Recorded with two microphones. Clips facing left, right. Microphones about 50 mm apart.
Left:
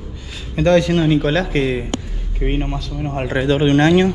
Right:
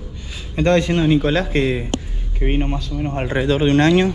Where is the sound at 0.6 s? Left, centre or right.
Right.